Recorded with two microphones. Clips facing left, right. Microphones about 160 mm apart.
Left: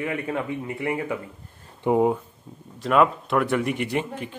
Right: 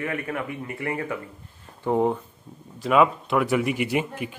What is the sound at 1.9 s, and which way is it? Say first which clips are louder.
Speech: left 2 dB; 5° left (ahead or behind).